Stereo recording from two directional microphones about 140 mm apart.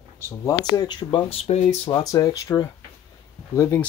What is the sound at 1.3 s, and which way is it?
Speech, 50° left (ahead or behind).